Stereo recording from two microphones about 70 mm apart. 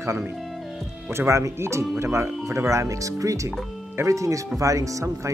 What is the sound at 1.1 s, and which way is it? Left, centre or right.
Speech, right.